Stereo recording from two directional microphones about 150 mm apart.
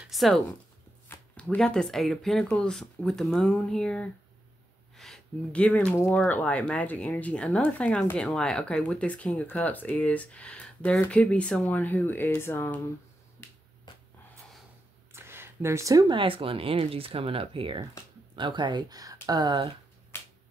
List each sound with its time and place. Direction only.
0.1 s speech: centre (ahead or behind); by 12.8 s 15° left (ahead or behind)
15.1 s speech: 15° right (ahead or behind)
20.1 s finger snapping: 15° left (ahead or behind)